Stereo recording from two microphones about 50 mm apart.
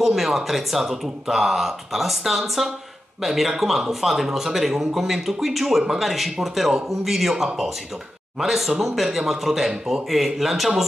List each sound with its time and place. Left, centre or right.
0.0 s speech: centre